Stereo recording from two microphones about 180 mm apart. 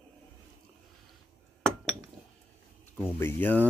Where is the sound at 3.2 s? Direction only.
10° left (ahead or behind).